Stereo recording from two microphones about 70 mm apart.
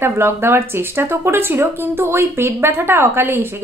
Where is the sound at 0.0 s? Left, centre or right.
Right.